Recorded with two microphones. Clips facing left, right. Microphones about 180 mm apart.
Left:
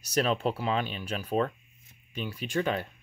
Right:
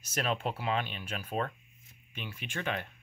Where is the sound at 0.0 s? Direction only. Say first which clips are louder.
Left 6 dB; 35° left (ahead or behind).